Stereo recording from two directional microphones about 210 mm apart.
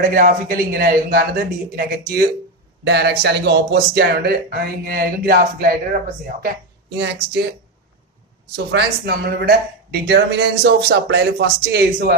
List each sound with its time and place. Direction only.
0.0 s speech: 45° right (ahead or behind)
6.9 s speech: 55° right (ahead or behind)
8.7 s speech: 50° right (ahead or behind)